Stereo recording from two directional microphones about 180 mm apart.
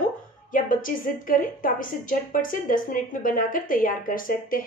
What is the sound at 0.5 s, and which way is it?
A woman's voice, 50° left (ahead or behind).